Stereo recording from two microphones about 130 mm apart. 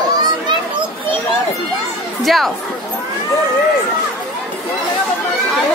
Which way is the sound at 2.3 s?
Centre (ahead or behind).